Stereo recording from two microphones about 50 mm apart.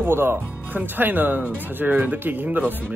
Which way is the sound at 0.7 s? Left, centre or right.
Right.